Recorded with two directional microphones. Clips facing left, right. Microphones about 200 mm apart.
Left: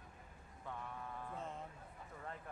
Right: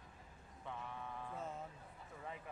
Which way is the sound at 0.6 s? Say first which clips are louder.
Even; centre (ahead or behind).